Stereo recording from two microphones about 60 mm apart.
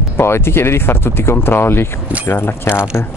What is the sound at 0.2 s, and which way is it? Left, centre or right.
Speech, left.